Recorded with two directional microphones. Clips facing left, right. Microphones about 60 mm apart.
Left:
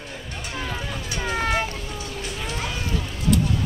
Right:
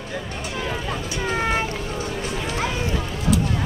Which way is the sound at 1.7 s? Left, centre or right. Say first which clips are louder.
Right 5 dB; right.